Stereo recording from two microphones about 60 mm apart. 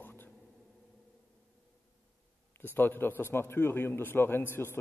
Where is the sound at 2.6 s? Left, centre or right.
Left.